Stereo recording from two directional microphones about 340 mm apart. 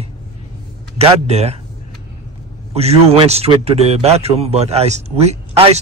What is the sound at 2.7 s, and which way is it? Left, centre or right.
A man's voice, centre.